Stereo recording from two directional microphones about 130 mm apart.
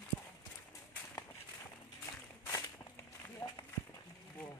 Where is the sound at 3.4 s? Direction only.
20° left (ahead or behind).